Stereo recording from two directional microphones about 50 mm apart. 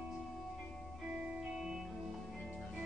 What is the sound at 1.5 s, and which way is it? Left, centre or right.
Music, centre.